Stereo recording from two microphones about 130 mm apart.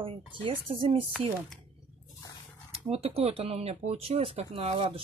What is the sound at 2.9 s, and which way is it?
A woman's voice, 50° right (ahead or behind).